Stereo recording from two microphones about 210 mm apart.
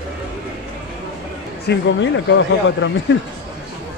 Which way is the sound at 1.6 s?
60° left (ahead or behind).